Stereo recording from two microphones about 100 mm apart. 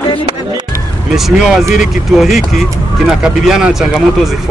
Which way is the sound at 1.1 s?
5° right (ahead or behind).